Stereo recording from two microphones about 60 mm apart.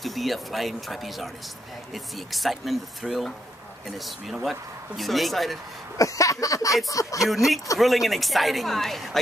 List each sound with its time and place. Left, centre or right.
0.0 s speech: centre
5.9 s a sound: left
6.9 s speech: left
7.2 s speech: centre